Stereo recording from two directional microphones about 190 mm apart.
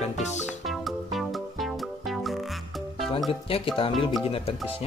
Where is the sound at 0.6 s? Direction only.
Centre (ahead or behind).